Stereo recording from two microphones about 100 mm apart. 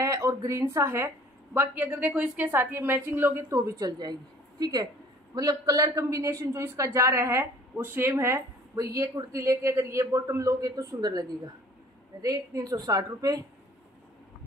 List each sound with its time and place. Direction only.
0.0 s a woman's voice: 35° right (ahead or behind)